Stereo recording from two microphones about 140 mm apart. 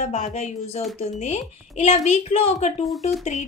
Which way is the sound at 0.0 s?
50° left (ahead or behind).